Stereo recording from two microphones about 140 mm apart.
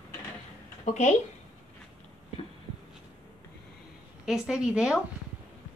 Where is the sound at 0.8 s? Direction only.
55° left (ahead or behind).